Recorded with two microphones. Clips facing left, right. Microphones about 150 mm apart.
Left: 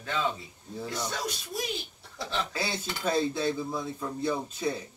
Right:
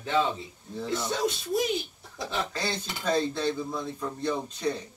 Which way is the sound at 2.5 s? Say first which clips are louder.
Right 1 dB; 5° left (ahead or behind).